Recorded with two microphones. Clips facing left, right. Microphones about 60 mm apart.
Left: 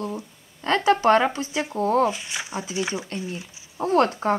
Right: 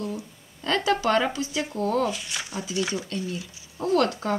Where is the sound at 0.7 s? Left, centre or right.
Left.